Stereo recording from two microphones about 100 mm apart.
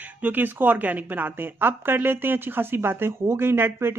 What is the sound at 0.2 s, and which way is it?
A woman's voice, 20° right (ahead or behind).